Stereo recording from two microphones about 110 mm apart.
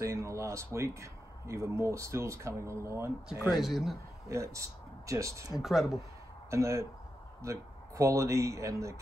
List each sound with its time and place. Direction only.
0.0 s speech: 25° right (ahead or behind)
3.6 s a man's voice: centre (ahead or behind)
4.3 s speech: 30° right (ahead or behind)
5.6 s a man's voice: centre (ahead or behind)
6.5 s speech: 25° right (ahead or behind)